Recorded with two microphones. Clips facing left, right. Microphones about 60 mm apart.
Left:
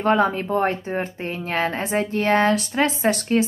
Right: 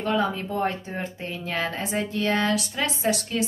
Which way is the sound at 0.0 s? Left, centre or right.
Left.